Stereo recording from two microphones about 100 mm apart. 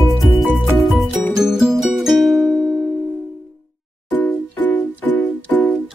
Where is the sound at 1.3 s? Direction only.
5° right (ahead or behind).